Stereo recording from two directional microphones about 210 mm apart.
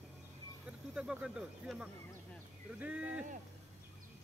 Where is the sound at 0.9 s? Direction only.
5° right (ahead or behind).